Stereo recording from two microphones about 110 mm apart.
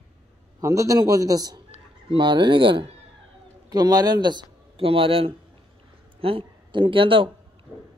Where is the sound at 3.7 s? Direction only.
35° right (ahead or behind).